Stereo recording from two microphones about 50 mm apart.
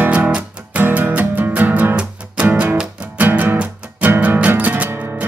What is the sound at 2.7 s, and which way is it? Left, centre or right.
Music, right.